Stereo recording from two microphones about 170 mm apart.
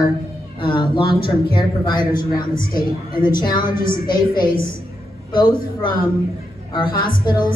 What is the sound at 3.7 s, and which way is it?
Speech, 55° left (ahead or behind).